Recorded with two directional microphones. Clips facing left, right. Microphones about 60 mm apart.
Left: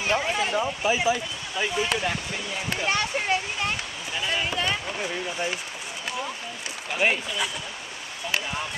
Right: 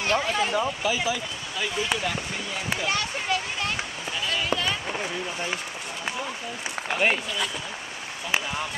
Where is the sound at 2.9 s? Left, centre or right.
Left.